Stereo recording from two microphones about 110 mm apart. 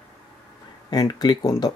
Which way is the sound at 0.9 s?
40° left (ahead or behind).